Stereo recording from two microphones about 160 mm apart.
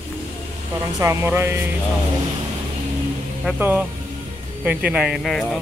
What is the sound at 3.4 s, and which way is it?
Speech, 10° right (ahead or behind).